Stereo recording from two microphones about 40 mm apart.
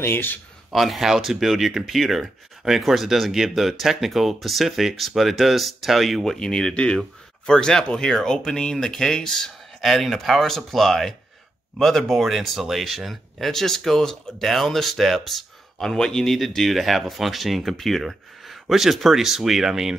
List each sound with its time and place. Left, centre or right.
0.0 s a man's voice: left
0.7 s speech: centre
6.3 s speech: centre
9.8 s speech: centre
16.6 s speech: centre